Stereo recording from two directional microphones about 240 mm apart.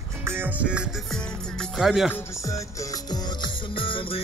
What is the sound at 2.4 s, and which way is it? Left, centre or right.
Music, centre.